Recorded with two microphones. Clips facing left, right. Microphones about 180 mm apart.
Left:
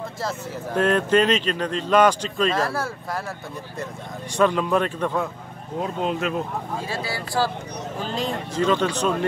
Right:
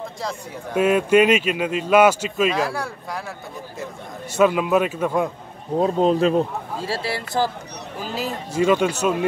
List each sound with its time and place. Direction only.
0.2 s speech: centre (ahead or behind)
0.7 s speech: 10° right (ahead or behind)
4.4 s speech: 5° right (ahead or behind)
5.8 s speech: 35° right (ahead or behind)
8.0 s speech: 5° right (ahead or behind)